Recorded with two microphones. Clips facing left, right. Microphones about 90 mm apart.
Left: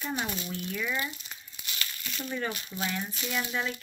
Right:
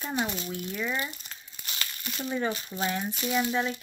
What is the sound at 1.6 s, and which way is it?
Crumpling, 30° right (ahead or behind).